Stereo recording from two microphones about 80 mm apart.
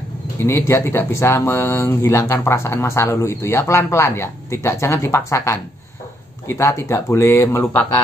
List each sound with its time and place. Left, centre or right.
0.4 s speech: left